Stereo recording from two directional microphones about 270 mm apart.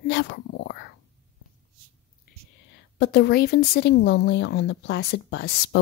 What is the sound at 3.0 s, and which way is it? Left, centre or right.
A woman's voice, left.